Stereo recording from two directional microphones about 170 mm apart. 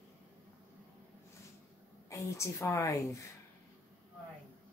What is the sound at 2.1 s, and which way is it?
Speech, 20° left (ahead or behind).